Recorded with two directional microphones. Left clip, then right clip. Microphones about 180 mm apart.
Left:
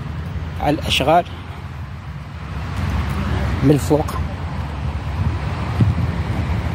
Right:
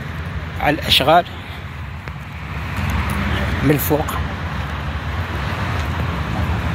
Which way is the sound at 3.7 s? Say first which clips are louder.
Left 2 dB; 35° left (ahead or behind).